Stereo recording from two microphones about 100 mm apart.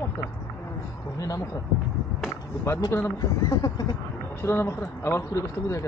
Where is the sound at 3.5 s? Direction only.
40° left (ahead or behind).